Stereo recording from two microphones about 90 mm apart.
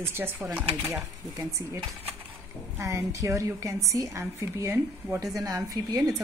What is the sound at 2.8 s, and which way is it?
A woman's voice, 35° right (ahead or behind).